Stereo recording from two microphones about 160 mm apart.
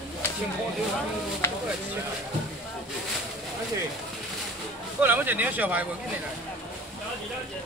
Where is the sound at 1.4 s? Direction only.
15° left (ahead or behind).